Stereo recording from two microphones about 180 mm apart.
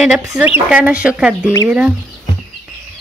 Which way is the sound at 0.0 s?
5° right (ahead or behind).